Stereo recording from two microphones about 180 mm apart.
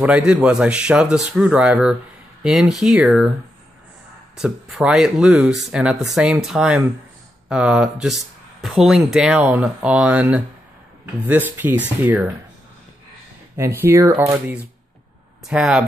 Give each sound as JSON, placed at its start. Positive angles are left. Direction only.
{"t": 0.0, "sound": "speech", "side_deg": -5}
{"t": 4.4, "sound": "speech", "side_deg": -5}
{"t": 13.6, "sound": "speech", "side_deg": -15}